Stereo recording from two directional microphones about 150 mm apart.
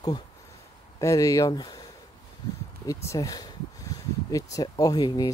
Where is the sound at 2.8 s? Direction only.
20° left (ahead or behind).